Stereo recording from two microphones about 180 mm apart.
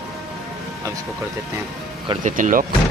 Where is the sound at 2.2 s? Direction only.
45° right (ahead or behind).